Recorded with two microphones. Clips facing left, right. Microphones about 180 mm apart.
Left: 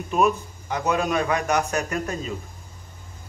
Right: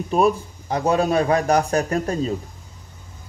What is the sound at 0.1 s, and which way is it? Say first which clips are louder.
Speech: right 3 dB; 35° right (ahead or behind).